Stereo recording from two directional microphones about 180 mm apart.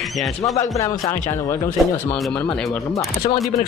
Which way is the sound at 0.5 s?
20° left (ahead or behind).